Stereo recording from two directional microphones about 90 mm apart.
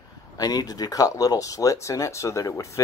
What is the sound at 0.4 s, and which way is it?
Speech, 45° left (ahead or behind).